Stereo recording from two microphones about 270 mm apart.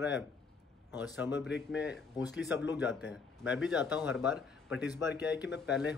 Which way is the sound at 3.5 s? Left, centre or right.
Centre.